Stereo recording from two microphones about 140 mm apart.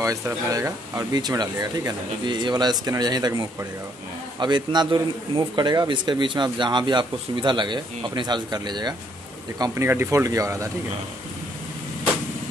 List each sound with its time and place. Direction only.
0.0 s a man's voice: 25° right (ahead or behind)
9.6 s speech: 20° right (ahead or behind)